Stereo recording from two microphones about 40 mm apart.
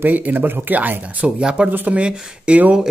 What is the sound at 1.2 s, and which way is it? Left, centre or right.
Speech, right.